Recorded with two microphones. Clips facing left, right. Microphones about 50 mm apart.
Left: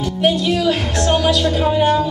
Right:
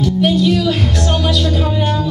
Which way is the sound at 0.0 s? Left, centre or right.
Centre.